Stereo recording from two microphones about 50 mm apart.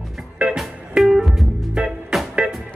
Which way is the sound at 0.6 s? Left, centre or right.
Centre.